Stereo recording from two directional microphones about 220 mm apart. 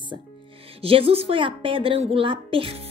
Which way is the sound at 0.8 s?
25° right (ahead or behind).